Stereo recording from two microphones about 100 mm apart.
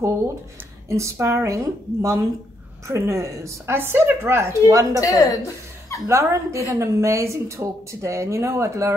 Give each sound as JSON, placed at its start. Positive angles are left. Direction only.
{"t": 0.8, "sound": "a woman's voice", "side_deg": -30}
{"t": 4.9, "sound": "a woman's voice", "side_deg": 30}
{"t": 6.0, "sound": "a woman's voice", "side_deg": -30}